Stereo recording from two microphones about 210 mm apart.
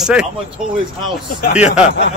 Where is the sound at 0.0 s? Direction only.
5° right (ahead or behind).